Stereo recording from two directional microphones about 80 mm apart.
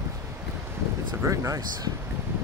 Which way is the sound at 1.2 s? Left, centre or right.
Right.